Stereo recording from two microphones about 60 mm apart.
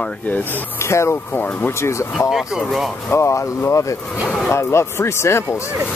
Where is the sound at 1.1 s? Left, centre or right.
Left.